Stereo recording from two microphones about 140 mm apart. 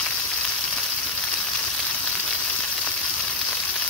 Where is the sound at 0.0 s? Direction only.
5° left (ahead or behind).